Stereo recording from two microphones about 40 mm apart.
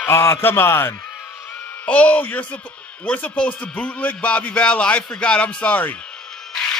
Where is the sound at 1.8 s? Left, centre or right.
Left.